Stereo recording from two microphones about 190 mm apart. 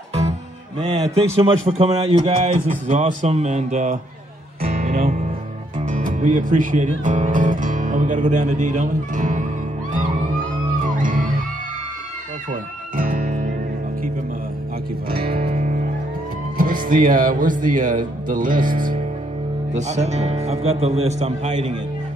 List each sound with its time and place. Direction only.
0.7 s a man's voice: 25° right (ahead or behind)
4.6 s music: 45° right (ahead or behind)
5.9 s speech: 40° right (ahead or behind)
10.8 s music: 45° right (ahead or behind)
12.9 s music: 50° right (ahead or behind)
15.4 s music: 40° right (ahead or behind)
16.5 s speech: 45° right (ahead or behind)